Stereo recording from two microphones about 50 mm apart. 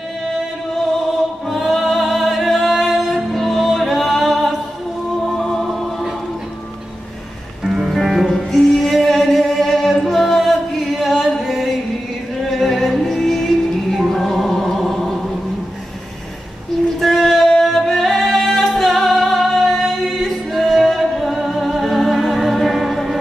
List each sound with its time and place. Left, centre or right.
1.5 s music: centre
7.6 s music: centre
17.0 s a sound: centre
17.5 s music: centre